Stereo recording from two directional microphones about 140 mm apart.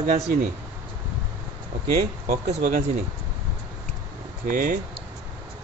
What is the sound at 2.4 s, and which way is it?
Speech, 60° right (ahead or behind).